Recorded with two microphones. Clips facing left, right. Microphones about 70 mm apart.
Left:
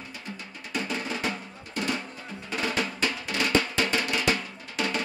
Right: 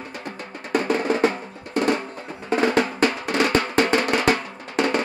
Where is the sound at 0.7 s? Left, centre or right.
Right.